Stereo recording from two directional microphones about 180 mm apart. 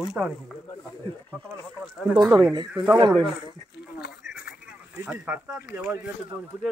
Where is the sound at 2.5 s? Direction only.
25° right (ahead or behind).